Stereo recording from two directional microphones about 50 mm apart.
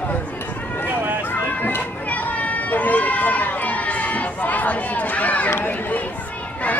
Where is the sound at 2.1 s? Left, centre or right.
Left.